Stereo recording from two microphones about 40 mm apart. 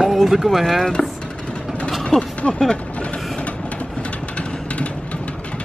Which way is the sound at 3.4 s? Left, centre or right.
Left.